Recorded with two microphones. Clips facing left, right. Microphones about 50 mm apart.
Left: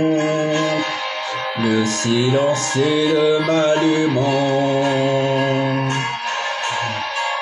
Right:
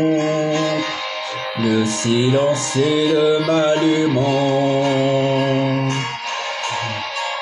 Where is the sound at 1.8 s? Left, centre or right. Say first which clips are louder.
Even; centre.